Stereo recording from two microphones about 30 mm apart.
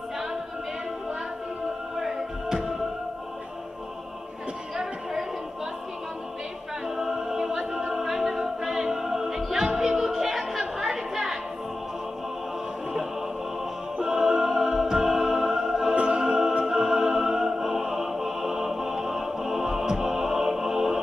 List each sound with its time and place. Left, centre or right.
2.0 s music: centre
7.0 s a capella: centre
9.8 s music: centre
14.0 s music: centre
15.9 s music: right
16.6 s music: centre